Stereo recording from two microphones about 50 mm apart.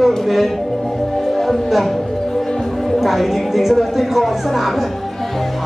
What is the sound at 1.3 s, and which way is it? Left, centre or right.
Music, centre.